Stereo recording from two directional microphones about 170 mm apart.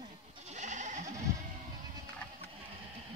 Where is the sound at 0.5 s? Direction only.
45° right (ahead or behind).